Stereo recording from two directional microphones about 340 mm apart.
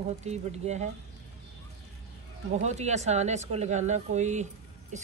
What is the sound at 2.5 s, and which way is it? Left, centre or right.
Speech, centre.